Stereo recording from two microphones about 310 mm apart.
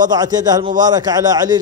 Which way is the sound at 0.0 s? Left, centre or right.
Centre.